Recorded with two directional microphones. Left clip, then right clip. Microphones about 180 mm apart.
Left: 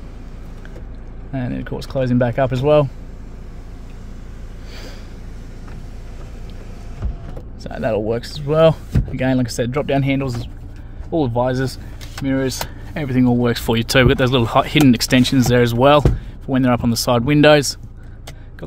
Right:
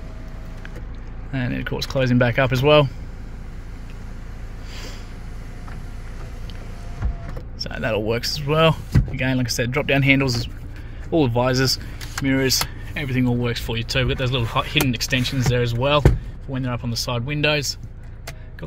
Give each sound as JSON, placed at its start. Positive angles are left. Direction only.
{"t": 1.3, "sound": "speech", "side_deg": 5}
{"t": 7.6, "sound": "speech", "side_deg": 10}
{"t": 10.1, "sound": "speech", "side_deg": -5}
{"t": 11.1, "sound": "speech", "side_deg": 5}
{"t": 12.9, "sound": "speech", "side_deg": 25}
{"t": 13.5, "sound": "speech", "side_deg": 45}